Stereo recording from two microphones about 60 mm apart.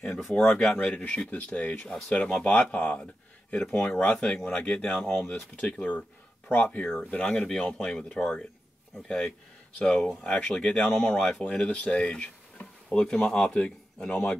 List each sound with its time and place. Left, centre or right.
0.0 s speech: centre
0.7 s speech: left
2.6 s speech: left
7.3 s speech: centre
10.9 s speech: left
11.1 s speech: centre